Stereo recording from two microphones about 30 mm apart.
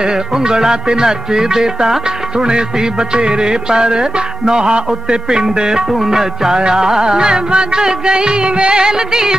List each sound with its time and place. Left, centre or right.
0.0 s music: right
5.9 s music: centre
6.5 s music: right